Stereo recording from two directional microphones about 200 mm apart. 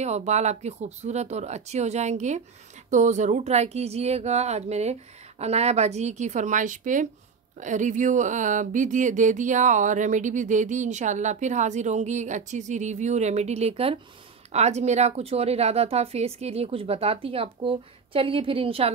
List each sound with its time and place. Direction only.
0.0 s speech: 35° right (ahead or behind)